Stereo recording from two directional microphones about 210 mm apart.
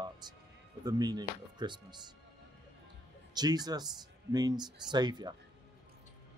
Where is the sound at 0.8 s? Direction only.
20° right (ahead or behind).